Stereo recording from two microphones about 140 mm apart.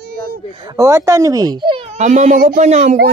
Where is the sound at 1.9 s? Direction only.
60° right (ahead or behind).